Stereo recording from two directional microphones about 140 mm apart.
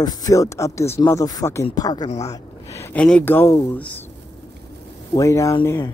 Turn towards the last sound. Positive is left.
turn(degrees=20)  # may be behind; listen again after turning